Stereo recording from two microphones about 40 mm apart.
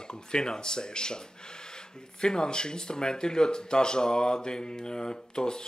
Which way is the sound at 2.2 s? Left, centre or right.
Centre.